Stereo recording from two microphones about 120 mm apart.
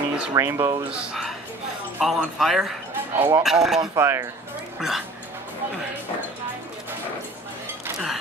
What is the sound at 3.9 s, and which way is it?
Speech, 25° right (ahead or behind).